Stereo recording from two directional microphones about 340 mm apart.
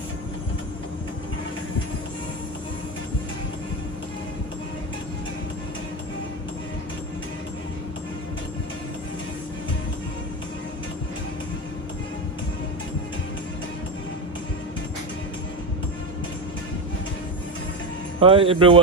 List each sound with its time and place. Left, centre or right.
18.2 s speech: centre